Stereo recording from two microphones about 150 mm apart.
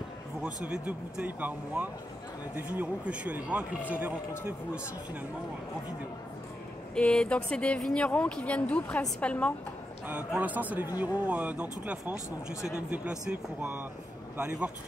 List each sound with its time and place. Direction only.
0.4 s speech: 5° right (ahead or behind)
7.0 s speech: 5° left (ahead or behind)
10.0 s speech: 10° right (ahead or behind)